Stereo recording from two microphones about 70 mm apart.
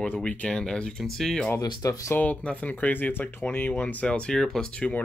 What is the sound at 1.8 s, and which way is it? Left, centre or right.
Speech, left.